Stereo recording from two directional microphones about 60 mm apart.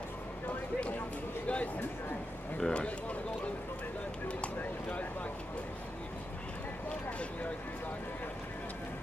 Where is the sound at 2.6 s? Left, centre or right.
Centre.